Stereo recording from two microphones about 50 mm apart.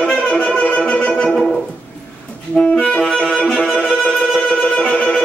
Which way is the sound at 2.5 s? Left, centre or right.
Left.